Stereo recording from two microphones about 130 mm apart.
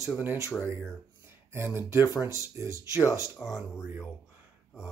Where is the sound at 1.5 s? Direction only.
20° right (ahead or behind).